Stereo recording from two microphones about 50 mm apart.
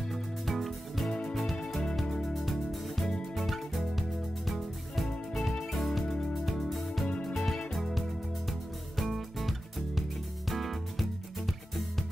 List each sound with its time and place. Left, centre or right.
0.1 s music: centre
2.3 s music: centre
7.1 s music: left
7.3 s music: centre